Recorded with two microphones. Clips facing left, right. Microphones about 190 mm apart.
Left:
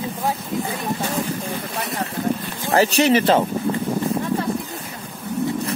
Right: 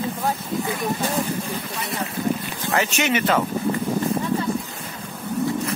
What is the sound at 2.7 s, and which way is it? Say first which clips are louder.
Speech: left 6 dB; 35° left (ahead or behind).